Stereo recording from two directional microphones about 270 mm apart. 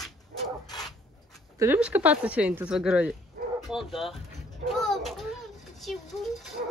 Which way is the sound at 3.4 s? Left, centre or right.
Right.